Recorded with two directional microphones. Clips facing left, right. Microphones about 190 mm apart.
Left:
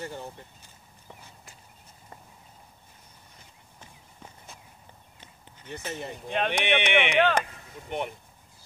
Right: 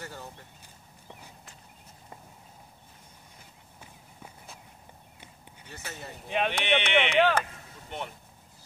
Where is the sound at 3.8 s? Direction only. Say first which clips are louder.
Even; 5° right (ahead or behind).